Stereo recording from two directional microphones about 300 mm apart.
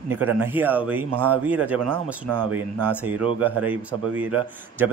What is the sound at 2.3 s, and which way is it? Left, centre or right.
Speech, right.